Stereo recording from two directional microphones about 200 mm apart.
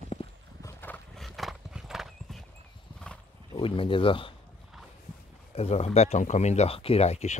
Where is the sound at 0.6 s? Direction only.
10° left (ahead or behind).